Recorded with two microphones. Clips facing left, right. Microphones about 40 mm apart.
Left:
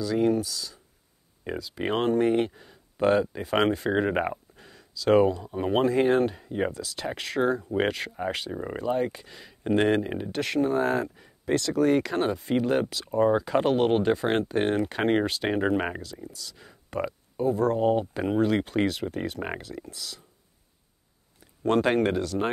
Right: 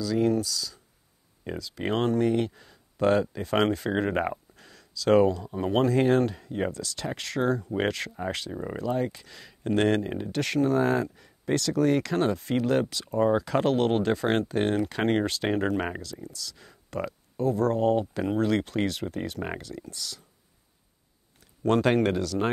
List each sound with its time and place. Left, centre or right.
0.0 s speech: centre
21.6 s speech: centre